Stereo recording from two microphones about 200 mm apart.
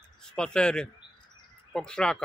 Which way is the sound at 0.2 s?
5° left (ahead or behind).